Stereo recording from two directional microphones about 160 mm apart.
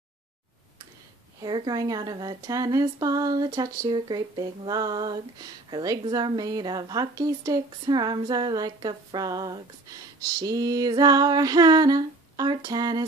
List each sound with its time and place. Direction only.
1.4 s speech: 25° right (ahead or behind)